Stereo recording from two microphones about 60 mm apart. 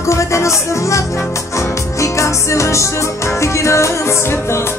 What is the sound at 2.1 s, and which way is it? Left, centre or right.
Music, left.